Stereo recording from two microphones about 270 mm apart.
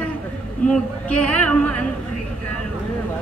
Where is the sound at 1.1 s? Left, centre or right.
Centre.